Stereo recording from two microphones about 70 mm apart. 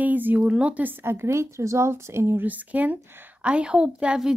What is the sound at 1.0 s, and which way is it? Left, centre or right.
A woman's voice, right.